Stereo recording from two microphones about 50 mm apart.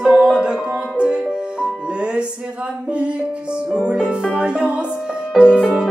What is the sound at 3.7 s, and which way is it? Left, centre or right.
Music, centre.